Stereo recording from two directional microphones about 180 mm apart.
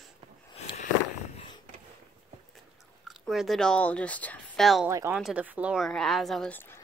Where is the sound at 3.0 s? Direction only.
Centre (ahead or behind).